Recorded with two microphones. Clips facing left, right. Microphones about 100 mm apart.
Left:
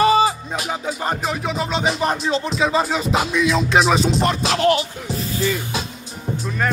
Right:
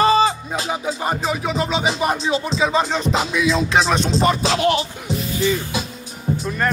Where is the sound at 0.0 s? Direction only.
30° right (ahead or behind).